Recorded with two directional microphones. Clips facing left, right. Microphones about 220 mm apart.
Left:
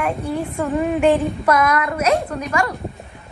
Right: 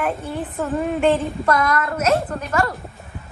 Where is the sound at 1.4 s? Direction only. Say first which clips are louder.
Left 2 dB; 20° left (ahead or behind).